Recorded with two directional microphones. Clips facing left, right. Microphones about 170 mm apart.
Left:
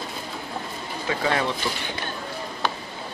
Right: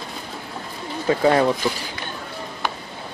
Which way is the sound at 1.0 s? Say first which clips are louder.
Right 8 dB; 40° right (ahead or behind).